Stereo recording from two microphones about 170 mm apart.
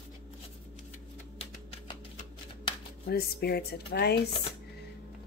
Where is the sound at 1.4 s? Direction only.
35° left (ahead or behind).